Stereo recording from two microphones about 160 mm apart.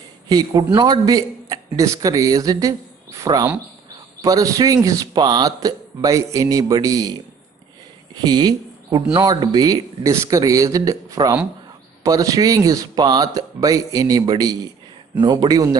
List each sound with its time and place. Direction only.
0.3 s speech: 25° right (ahead or behind)
8.2 s speech: 25° right (ahead or behind)